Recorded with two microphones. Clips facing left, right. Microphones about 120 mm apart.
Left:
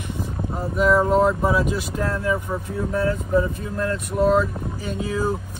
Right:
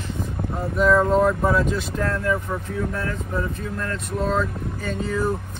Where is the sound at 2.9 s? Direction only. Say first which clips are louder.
Left 6 dB; 20° left (ahead or behind).